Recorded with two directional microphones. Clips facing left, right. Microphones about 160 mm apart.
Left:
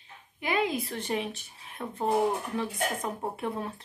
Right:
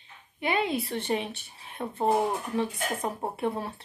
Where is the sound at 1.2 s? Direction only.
30° right (ahead or behind).